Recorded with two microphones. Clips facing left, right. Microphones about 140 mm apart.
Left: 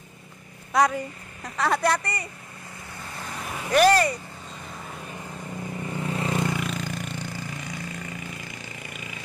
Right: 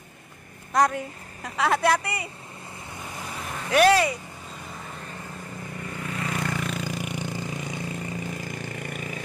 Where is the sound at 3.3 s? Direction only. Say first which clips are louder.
Even; 5° left (ahead or behind).